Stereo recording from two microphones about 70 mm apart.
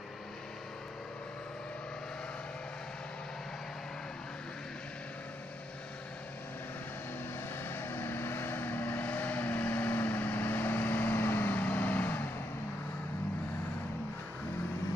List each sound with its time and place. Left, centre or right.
7.6 s vehicle: left